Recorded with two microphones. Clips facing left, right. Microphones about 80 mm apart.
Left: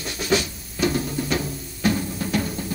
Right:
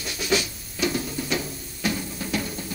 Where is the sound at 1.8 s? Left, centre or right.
Left.